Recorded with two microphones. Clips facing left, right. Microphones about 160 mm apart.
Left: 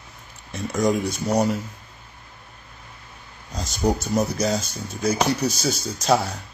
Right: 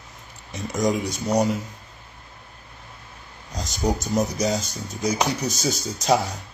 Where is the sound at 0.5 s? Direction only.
15° right (ahead or behind).